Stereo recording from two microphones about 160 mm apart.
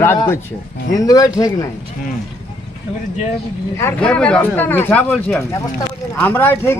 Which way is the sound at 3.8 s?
10° left (ahead or behind).